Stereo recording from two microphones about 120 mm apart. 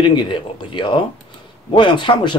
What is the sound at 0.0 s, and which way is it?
Speech, 40° left (ahead or behind).